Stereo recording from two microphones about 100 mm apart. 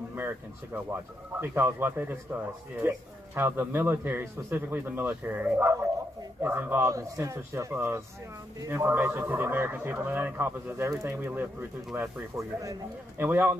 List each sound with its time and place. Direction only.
0.1 s speech: 20° right (ahead or behind)
6.9 s speech: 30° right (ahead or behind)
11.1 s speech: 20° right (ahead or behind)
13.2 s speech: 20° right (ahead or behind)